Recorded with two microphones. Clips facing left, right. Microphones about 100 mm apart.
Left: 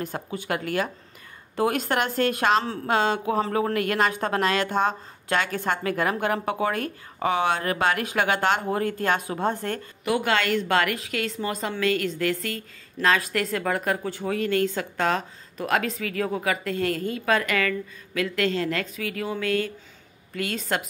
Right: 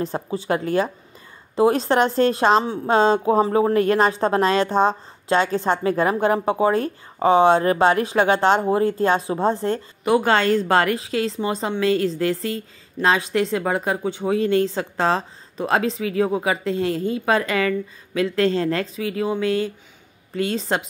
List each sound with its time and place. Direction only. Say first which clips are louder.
0.0 s a woman's voice: right 6 dB; 25° right (ahead or behind)